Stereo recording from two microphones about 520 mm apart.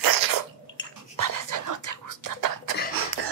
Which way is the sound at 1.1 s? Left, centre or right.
Right.